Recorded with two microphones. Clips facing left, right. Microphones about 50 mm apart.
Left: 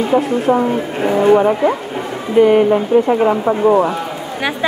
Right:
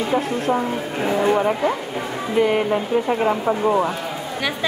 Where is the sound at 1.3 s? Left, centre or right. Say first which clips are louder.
Left 7 dB; centre.